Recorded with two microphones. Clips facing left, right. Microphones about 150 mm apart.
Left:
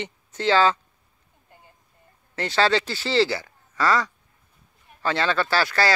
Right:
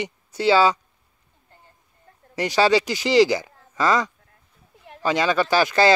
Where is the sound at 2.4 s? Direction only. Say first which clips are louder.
Right 3 dB; 10° right (ahead or behind).